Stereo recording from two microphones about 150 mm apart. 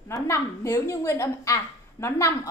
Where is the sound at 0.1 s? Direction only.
15° left (ahead or behind).